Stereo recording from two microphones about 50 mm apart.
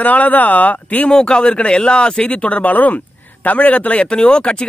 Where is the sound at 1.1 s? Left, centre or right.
Centre.